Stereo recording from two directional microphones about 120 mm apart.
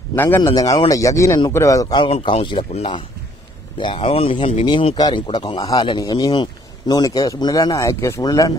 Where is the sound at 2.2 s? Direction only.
40° left (ahead or behind).